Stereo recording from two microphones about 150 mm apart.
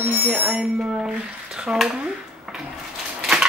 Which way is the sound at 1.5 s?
5° right (ahead or behind).